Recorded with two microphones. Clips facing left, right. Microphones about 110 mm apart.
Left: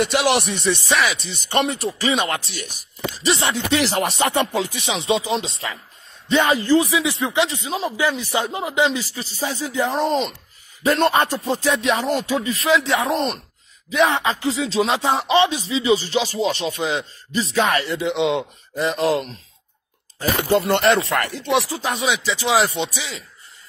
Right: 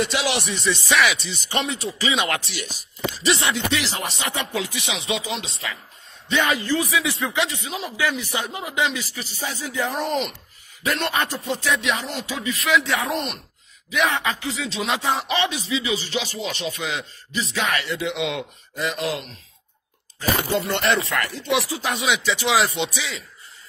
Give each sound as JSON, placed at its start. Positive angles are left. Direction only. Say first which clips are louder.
{"t": 0.0, "sound": "speech", "louder": "left 5 dB", "side_deg": 60}
{"t": 2.2, "sound": "speech", "louder": "left 1 dB", "side_deg": 30}
{"t": 3.9, "sound": "speech", "louder": "left 8 dB", "side_deg": 60}
{"t": 4.6, "sound": "speech", "louder": "left 4 dB", "side_deg": 30}
{"t": 20.6, "sound": "speech", "louder": "left 5 dB", "side_deg": 45}
{"t": 21.4, "sound": "speech", "louder": "left 2 dB", "side_deg": 0}
{"t": 21.6, "sound": "speech", "louder": "left 1 dB", "side_deg": 35}